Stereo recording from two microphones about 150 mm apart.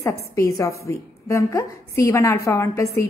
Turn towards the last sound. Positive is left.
turn(degrees=20)  # may be behind; listen again after turning